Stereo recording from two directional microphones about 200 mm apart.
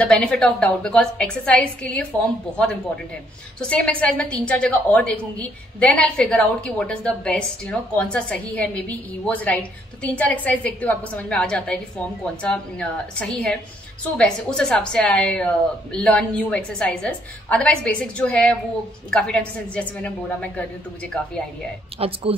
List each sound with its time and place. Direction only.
0.0 s a woman's voice: 5° left (ahead or behind)
21.9 s speech: 30° right (ahead or behind)